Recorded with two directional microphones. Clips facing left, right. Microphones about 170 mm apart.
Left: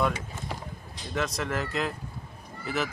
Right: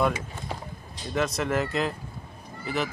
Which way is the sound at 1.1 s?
5° right (ahead or behind).